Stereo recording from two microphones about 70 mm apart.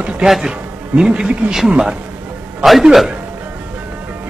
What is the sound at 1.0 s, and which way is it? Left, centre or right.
Speech, centre.